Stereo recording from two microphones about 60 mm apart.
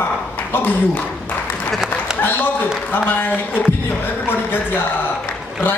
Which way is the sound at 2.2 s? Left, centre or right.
Left.